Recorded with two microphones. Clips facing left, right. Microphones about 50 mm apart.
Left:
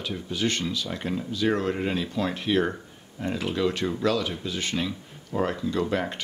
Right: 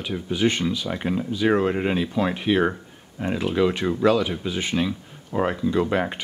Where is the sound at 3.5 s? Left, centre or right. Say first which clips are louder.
Right 5 dB; right.